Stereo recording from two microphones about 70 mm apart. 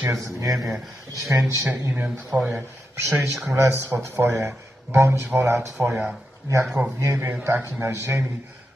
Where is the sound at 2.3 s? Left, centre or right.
Centre.